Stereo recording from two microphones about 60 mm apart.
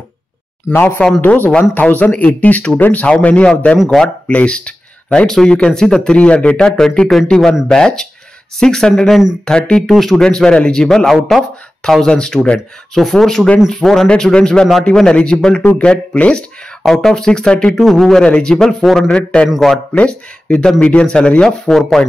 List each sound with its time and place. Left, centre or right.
0.7 s speech: left
3.7 s speech: centre
4.3 s speech: left
11.1 s speech: centre
11.9 s speech: centre
14.0 s speech: centre
16.8 s speech: centre
17.7 s speech: centre
18.2 s speech: centre
19.1 s speech: centre
19.5 s speech: centre
19.9 s speech: centre